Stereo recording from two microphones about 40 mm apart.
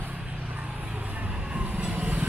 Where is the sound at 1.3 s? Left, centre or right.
Right.